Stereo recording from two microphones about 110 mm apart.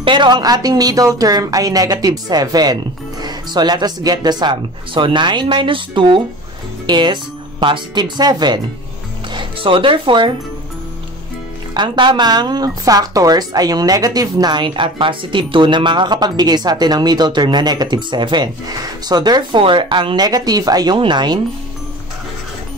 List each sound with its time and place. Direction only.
0.0 s speech: 45° right (ahead or behind)
11.7 s speech: 45° right (ahead or behind)